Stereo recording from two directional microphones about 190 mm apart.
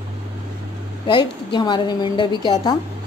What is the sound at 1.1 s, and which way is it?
A woman's voice, 25° left (ahead or behind).